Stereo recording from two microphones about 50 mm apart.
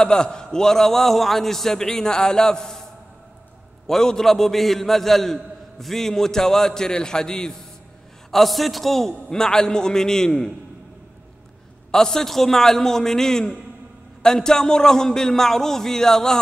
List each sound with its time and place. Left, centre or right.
0.0 s a man's voice: centre
8.3 s a man's voice: centre
11.9 s a man's voice: centre